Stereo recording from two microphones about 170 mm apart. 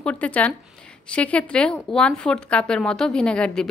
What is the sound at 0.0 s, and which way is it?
A woman's voice, 10° left (ahead or behind).